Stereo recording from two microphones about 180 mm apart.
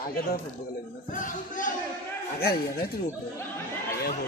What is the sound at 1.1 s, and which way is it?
Speech, 45° left (ahead or behind).